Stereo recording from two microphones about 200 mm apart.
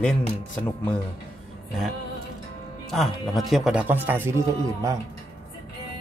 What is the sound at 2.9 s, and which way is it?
Speech, centre (ahead or behind).